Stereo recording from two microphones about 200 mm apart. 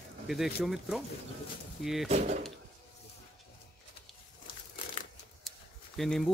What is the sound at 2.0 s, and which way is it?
Speech, 35° right (ahead or behind).